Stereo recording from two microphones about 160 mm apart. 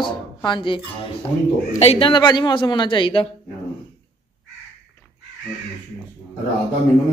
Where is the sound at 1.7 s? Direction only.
40° left (ahead or behind).